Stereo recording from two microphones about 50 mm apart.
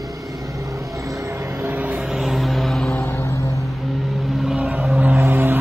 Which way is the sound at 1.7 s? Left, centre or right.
Right.